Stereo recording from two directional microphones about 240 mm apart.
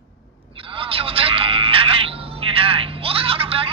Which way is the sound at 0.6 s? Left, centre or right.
Right.